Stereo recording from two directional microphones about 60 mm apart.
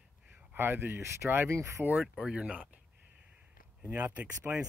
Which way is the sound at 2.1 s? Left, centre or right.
Centre.